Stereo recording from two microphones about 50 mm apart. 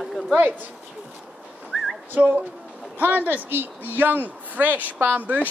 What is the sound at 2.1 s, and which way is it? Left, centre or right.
Speech, right.